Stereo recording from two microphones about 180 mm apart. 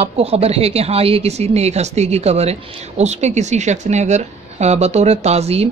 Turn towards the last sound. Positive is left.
turn(degrees=-35)  # may be behind; listen again after turning